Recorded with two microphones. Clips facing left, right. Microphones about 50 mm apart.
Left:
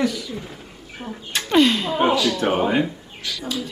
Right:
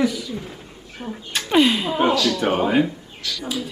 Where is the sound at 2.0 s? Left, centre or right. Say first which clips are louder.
Even; centre.